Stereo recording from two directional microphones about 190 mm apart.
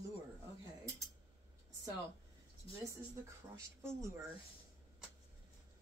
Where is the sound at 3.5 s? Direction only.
15° right (ahead or behind).